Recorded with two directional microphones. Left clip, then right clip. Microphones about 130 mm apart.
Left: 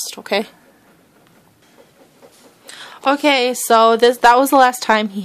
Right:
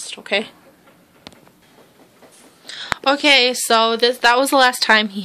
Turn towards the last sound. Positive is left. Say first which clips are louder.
# right 1 dB
turn(degrees=25)  # may be behind; listen again after turning